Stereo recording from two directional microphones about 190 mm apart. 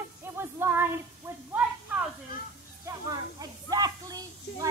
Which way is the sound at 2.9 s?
20° right (ahead or behind).